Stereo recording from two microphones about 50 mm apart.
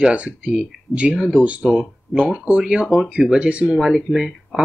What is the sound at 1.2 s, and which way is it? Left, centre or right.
Speech, centre.